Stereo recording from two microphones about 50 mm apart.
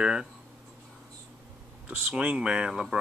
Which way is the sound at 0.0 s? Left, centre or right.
Centre.